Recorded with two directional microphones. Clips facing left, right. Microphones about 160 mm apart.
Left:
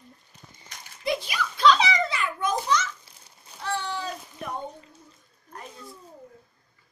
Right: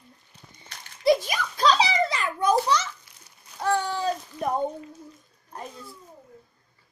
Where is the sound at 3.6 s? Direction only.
45° right (ahead or behind).